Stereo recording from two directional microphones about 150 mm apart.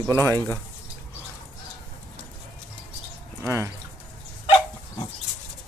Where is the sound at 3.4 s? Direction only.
20° right (ahead or behind).